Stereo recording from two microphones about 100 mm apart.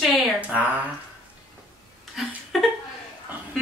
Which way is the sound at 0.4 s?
15° right (ahead or behind).